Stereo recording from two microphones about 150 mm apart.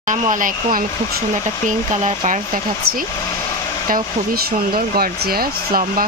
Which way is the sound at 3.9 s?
80° right.